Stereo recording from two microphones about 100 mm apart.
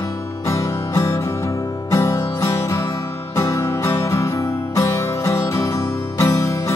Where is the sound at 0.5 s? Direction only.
25° left (ahead or behind).